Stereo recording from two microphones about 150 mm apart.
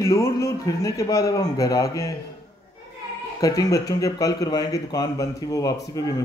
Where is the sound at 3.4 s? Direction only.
25° left (ahead or behind).